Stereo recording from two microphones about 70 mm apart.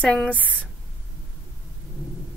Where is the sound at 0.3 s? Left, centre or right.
Centre.